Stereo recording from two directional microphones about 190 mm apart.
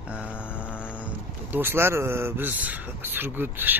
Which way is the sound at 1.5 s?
10° right (ahead or behind).